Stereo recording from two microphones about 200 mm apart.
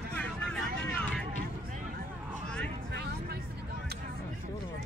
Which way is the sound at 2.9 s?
55° right (ahead or behind).